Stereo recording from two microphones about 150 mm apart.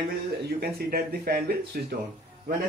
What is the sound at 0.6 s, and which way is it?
Speech, 90° right.